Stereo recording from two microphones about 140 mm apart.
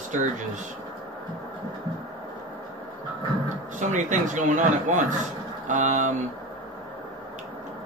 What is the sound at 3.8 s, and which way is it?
Speech, 60° right (ahead or behind).